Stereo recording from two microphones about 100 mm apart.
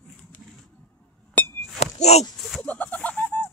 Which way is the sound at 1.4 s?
15° left (ahead or behind).